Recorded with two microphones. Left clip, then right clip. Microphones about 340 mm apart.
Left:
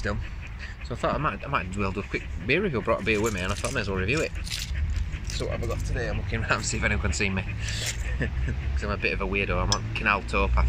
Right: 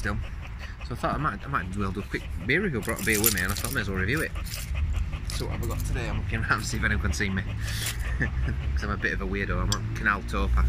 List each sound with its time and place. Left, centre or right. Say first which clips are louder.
0.8 s speech: left 2 dB; centre
3.1 s speech: even; left
3.4 s speech: left 1 dB; centre
5.9 s speech: left 1 dB; centre
9.0 s speech: left 3 dB; left
9.5 s speech: left 4 dB; centre